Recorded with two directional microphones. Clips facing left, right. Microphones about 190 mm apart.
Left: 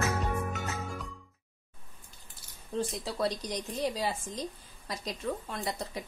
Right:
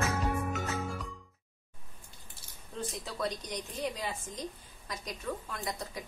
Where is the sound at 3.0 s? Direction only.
35° left (ahead or behind).